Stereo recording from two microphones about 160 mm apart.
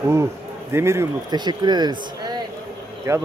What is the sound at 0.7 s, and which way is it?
Speech, 15° right (ahead or behind).